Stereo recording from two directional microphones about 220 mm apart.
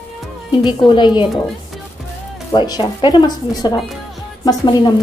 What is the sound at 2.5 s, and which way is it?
Speech, 20° left (ahead or behind).